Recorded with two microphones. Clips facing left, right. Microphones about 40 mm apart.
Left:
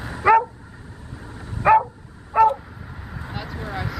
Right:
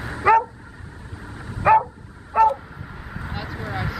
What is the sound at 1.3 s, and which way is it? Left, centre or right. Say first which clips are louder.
Dog: even; right.